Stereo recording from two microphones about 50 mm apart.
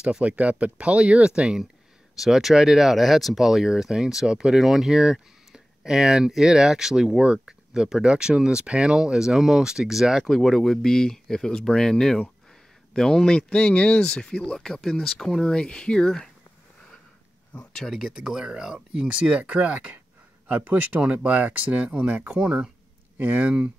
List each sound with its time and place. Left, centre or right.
0.2 s speech: right
2.1 s speech: centre
10.2 s speech: centre
15.4 s speech: centre
17.8 s speech: centre; by 22.4 s right
22.4 s speech: centre
23.1 s speech: right